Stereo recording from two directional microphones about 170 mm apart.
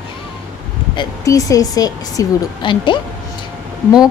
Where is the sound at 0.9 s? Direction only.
20° left (ahead or behind).